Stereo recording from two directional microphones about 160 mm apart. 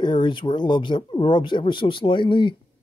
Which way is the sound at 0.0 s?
30° left (ahead or behind).